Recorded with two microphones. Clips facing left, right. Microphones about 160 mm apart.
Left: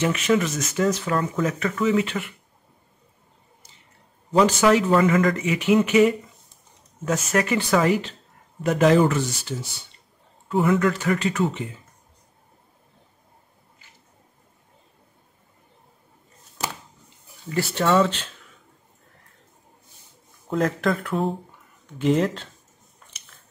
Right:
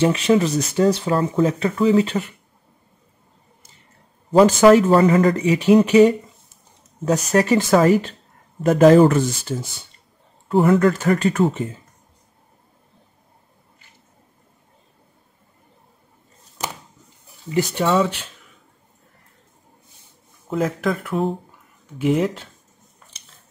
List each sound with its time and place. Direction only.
0.0 s speech: 30° right (ahead or behind)
4.4 s speech: 50° right (ahead or behind)
10.5 s speech: 40° right (ahead or behind)
17.5 s speech: 15° right (ahead or behind)
20.4 s speech: 5° right (ahead or behind)